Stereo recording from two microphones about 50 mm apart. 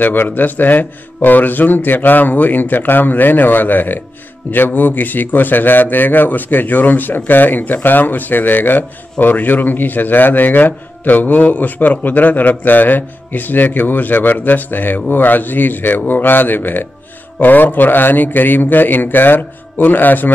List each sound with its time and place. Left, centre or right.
0.0 s a man's voice: left